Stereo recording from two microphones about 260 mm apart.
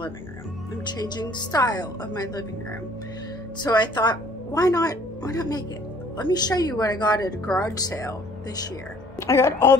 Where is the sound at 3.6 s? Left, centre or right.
Centre.